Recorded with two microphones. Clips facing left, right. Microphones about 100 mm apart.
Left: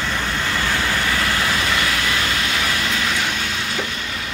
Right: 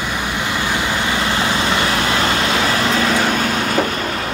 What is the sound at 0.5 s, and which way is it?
Vehicle, 15° right (ahead or behind).